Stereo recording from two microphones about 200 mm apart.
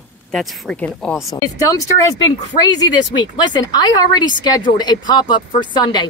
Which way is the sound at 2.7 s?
20° left (ahead or behind).